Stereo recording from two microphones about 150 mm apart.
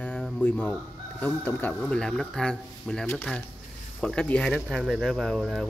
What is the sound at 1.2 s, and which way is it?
Speech, 10° left (ahead or behind).